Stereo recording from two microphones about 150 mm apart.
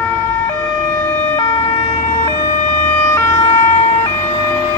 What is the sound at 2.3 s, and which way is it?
Ambulance, 20° left (ahead or behind).